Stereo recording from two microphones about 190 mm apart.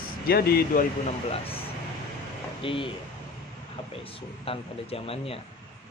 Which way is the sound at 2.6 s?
25° left (ahead or behind).